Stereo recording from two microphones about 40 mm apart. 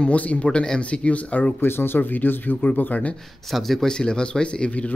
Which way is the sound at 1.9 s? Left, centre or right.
Left.